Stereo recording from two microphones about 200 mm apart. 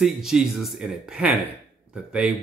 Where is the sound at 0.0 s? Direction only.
Centre (ahead or behind).